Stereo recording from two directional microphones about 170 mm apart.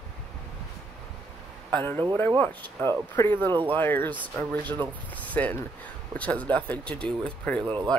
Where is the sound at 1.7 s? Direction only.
10° left (ahead or behind).